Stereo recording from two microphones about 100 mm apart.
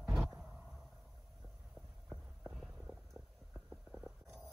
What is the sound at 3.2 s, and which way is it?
Stomach rumble, 5° left (ahead or behind).